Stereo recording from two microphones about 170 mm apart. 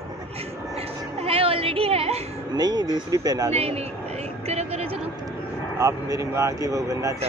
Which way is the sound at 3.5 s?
40° right (ahead or behind).